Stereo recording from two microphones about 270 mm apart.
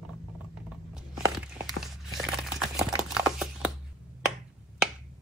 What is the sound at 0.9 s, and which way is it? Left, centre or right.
Crumpling, centre.